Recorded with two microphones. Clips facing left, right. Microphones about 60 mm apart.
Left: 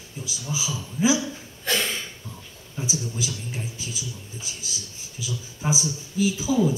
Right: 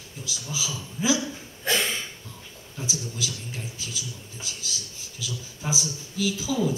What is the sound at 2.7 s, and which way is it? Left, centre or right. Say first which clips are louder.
A man's voice: left 4 dB; left.